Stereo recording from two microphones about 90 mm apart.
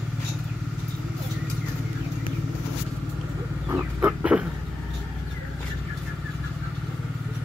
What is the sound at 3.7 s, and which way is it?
Chicken, 20° right (ahead or behind).